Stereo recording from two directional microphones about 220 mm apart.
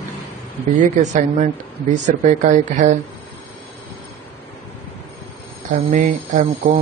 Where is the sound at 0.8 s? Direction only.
35° right (ahead or behind).